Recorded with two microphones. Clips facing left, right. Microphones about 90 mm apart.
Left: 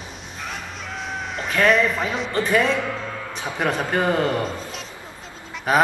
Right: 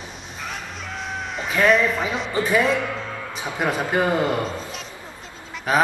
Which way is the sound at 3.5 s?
5° right (ahead or behind).